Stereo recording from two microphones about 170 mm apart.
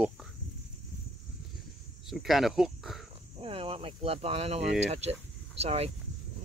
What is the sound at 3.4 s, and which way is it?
Speech, 35° right (ahead or behind).